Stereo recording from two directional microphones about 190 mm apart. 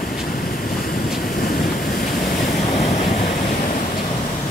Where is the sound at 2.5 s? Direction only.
35° left (ahead or behind).